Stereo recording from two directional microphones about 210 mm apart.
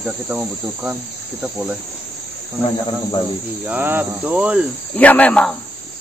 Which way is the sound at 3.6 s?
10° right (ahead or behind).